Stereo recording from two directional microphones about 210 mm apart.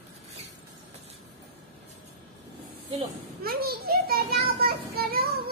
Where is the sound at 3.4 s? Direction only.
45° right (ahead or behind).